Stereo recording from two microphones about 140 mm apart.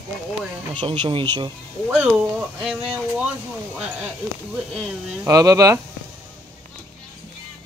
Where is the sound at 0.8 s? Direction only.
40° right (ahead or behind).